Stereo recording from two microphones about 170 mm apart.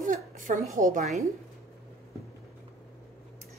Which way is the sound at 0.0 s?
50° right (ahead or behind).